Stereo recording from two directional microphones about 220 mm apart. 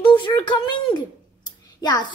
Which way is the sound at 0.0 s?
20° left (ahead or behind).